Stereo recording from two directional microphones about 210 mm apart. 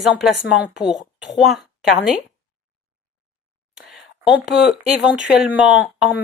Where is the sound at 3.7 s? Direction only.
Centre (ahead or behind).